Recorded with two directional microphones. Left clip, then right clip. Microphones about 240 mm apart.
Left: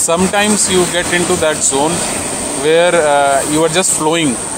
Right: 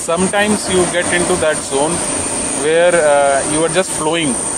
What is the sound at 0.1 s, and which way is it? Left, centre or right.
Speech, left.